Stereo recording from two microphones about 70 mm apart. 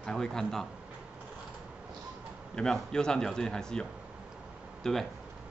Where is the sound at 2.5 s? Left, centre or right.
Centre.